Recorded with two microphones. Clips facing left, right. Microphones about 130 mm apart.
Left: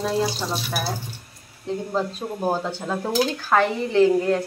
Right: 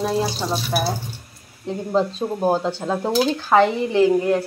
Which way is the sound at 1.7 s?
15° right (ahead or behind).